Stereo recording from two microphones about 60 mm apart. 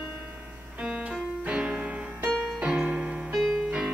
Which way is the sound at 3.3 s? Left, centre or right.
Centre.